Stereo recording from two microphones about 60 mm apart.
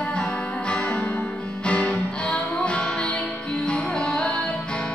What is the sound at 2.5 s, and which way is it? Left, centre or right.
Music, left.